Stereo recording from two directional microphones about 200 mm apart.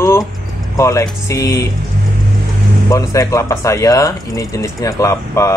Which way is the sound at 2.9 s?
15° left (ahead or behind).